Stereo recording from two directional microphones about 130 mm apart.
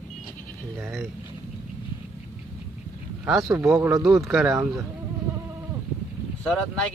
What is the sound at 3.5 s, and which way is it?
Speech, 20° right (ahead or behind).